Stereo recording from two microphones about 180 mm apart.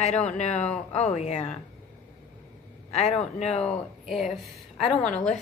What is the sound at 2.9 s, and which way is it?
Speech, 35° left (ahead or behind).